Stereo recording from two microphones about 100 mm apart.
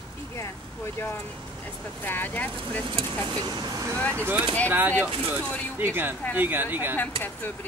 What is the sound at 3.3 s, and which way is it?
Speech, 40° right (ahead or behind).